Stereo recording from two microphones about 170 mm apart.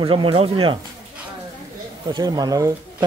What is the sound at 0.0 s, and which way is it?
Speech, 30° right (ahead or behind).